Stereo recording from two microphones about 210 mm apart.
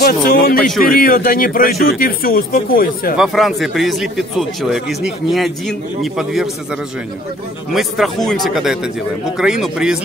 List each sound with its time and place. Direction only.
0.0 s speech: 45° left (ahead or behind)
3.2 s speech: centre (ahead or behind)
7.7 s speech: centre (ahead or behind)